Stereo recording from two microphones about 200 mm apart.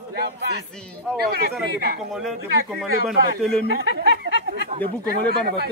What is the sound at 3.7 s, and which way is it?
Speech, 55° right (ahead or behind).